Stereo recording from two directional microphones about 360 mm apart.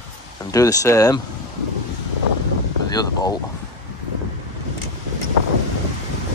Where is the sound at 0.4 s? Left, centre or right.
Centre.